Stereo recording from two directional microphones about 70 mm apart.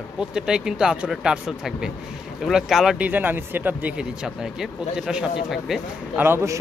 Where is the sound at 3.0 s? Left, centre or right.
Right.